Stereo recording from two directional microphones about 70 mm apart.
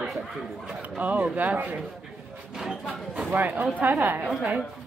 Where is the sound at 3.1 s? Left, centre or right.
Centre.